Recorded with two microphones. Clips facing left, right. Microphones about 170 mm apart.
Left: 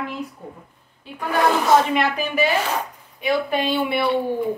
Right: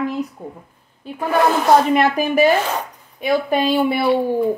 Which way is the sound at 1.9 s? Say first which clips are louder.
Right 5 dB; 45° right (ahead or behind).